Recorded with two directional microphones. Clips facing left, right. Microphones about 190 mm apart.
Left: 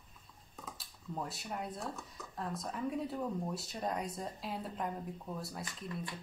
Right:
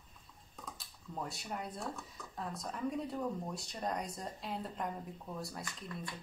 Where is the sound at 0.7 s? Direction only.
Centre (ahead or behind).